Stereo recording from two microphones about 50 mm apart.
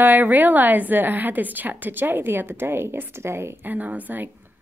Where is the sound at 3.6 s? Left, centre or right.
Right.